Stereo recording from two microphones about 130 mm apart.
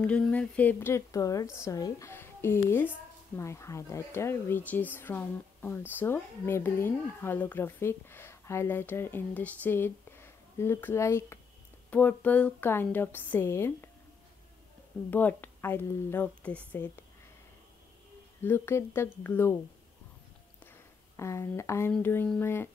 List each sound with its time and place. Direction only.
0.0 s a woman's voice: 10° left (ahead or behind)
15.0 s speech: 15° left (ahead or behind)
18.4 s speech: 15° left (ahead or behind)
21.2 s a woman's voice: 20° left (ahead or behind)